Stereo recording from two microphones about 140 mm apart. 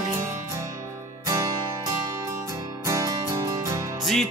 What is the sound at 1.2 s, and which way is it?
Music, 25° right (ahead or behind).